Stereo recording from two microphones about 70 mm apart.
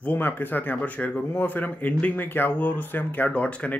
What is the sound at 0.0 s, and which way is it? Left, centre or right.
Speech, left.